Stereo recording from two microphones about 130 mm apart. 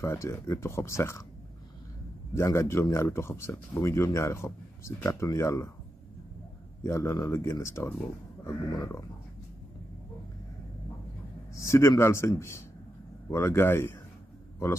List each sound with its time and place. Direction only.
0.0 s speech: 20° left (ahead or behind)
2.3 s speech: 20° left (ahead or behind)
6.8 s speech: 20° left (ahead or behind)
11.5 s speech: 20° left (ahead or behind)